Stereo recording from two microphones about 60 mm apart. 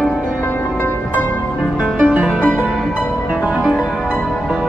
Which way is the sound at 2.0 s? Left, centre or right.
Right.